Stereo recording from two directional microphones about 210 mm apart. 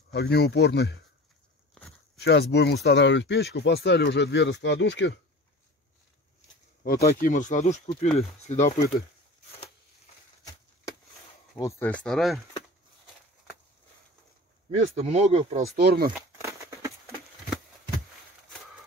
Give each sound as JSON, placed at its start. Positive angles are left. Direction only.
{"t": 0.1, "sound": "speech", "side_deg": 50}
{"t": 2.1, "sound": "speech", "side_deg": 50}
{"t": 6.8, "sound": "speech", "side_deg": 45}
{"t": 11.5, "sound": "speech", "side_deg": 10}
{"t": 14.8, "sound": "speech", "side_deg": -30}
{"t": 15.8, "sound": "speech", "side_deg": -50}
{"t": 16.3, "sound": "a sound", "side_deg": -10}